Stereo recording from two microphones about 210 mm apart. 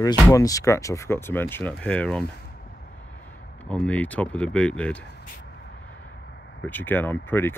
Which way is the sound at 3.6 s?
5° left (ahead or behind).